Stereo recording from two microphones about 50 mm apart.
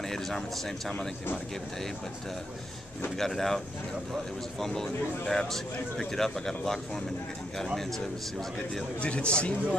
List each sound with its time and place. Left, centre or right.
0.0 s speech: centre
3.2 s a man's voice: centre
9.0 s a man's voice: left